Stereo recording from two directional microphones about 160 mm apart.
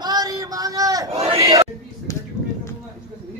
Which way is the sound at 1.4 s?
25° right (ahead or behind).